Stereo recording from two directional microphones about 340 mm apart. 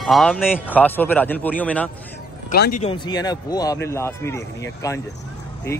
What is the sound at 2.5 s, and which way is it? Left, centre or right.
Speech, left.